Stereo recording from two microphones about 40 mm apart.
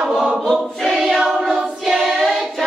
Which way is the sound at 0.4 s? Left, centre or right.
Centre.